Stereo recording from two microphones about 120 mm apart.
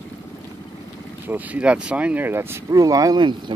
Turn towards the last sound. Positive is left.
turn(degrees=-35)  # may be behind; listen again after turning